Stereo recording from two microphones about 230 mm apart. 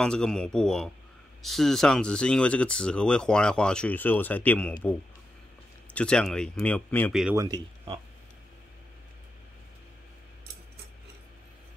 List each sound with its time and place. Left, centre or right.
0.0 s speech: centre
5.9 s speech: centre
7.3 s speech: centre